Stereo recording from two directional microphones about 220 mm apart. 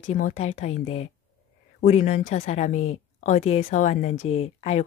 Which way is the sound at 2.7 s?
70° left (ahead or behind).